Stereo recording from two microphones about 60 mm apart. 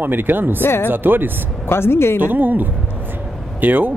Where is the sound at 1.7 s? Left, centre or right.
Left.